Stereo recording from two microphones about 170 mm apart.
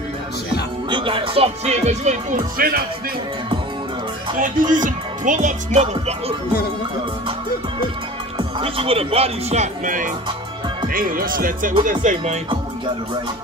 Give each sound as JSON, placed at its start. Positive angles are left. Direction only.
{"t": 0.8, "sound": "speech", "side_deg": -30}
{"t": 4.4, "sound": "speech", "side_deg": -50}
{"t": 8.4, "sound": "speech", "side_deg": -30}